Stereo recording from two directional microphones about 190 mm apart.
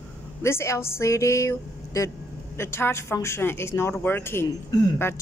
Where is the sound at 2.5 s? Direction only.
15° left (ahead or behind).